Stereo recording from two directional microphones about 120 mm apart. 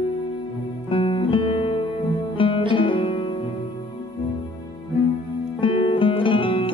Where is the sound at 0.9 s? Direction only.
45° left (ahead or behind).